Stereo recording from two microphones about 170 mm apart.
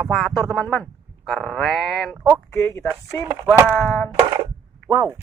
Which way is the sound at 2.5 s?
15° left (ahead or behind).